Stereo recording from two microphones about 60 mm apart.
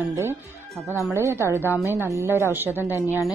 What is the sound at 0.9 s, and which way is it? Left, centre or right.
Speech, right.